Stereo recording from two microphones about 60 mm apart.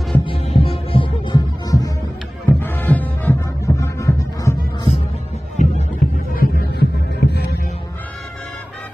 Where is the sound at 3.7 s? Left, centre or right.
Left.